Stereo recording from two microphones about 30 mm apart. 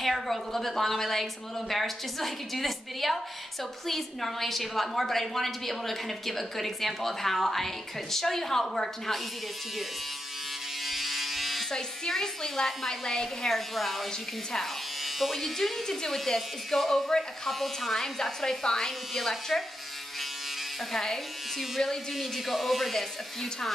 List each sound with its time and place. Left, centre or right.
0.0 s a woman's voice: centre
10.9 s electric shaver: centre
11.7 s a woman's voice: centre
13.7 s speech: centre
15.1 s speech: centre
15.5 s a woman's voice: centre
16.3 s a woman's voice: centre
18.6 s speech: left
19.1 s speech: centre
20.9 s a woman's voice: centre
22.1 s speech: centre